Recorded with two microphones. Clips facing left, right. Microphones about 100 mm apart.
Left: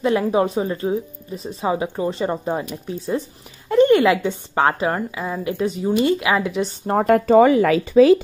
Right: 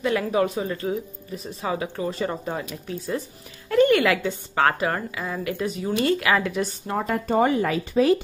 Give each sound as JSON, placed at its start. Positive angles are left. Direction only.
{"t": 0.0, "sound": "speech", "side_deg": 25}
{"t": 6.9, "sound": "speech", "side_deg": 55}